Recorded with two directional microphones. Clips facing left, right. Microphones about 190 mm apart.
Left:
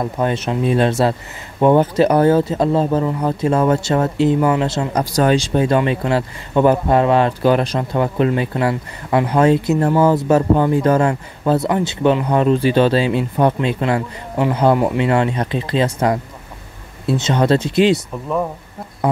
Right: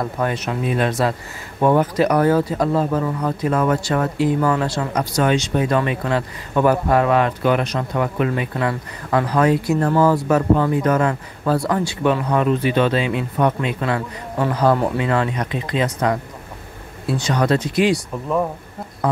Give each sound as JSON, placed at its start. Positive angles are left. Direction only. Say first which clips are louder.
{"t": 0.0, "sound": "speech", "louder": "left 3 dB", "side_deg": 25}
{"t": 5.1, "sound": "speech", "louder": "left 3 dB", "side_deg": 35}
{"t": 18.1, "sound": "speech", "louder": "even", "side_deg": 0}